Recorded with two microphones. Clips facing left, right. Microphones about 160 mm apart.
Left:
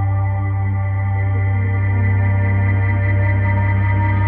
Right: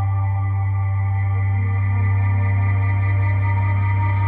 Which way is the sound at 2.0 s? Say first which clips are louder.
Left 5 dB; 60° left (ahead or behind).